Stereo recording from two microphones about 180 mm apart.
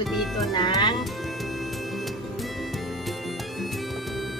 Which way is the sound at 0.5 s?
25° left (ahead or behind).